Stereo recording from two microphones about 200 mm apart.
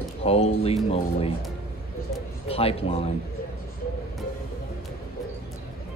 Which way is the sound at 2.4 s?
30° left (ahead or behind).